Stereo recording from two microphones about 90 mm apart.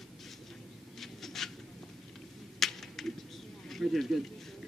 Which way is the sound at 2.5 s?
5° left (ahead or behind).